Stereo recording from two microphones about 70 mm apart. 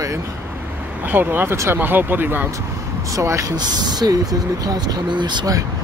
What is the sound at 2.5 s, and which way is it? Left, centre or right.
Speech, right.